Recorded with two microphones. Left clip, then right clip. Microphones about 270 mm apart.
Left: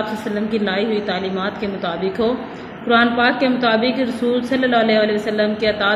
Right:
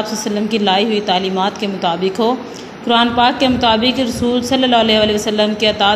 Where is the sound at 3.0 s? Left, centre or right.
Right.